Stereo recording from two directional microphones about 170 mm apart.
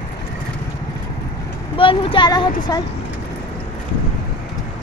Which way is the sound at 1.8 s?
30° left (ahead or behind).